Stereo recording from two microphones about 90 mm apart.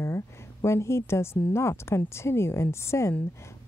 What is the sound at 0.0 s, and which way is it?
A woman's voice, 30° left (ahead or behind).